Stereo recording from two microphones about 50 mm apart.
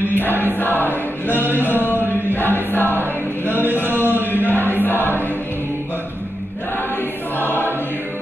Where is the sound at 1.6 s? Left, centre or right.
Left.